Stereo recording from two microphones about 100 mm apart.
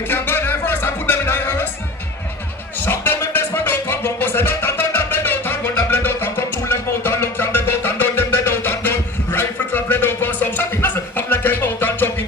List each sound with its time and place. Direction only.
0.1 s music: 20° left (ahead or behind)
2.8 s music: 20° left (ahead or behind)